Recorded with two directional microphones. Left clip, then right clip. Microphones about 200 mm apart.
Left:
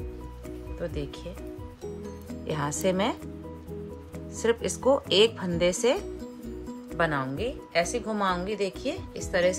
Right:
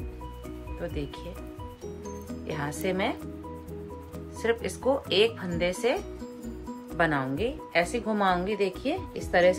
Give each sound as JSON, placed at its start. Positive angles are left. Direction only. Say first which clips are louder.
{"t": 0.7, "sound": "speech", "louder": "left 1 dB", "side_deg": 15}
{"t": 2.4, "sound": "speech", "louder": "left 4 dB", "side_deg": 20}
{"t": 4.4, "sound": "a woman's voice", "louder": "left 2 dB", "side_deg": 20}